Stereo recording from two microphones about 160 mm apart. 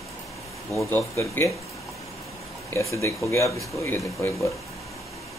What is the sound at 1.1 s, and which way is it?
Speech, 20° left (ahead or behind).